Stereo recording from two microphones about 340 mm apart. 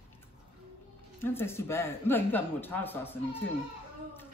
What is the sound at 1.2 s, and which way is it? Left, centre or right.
Speech, centre.